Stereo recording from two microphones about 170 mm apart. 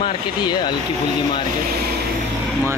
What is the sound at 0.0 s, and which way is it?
Speech, 25° left (ahead or behind).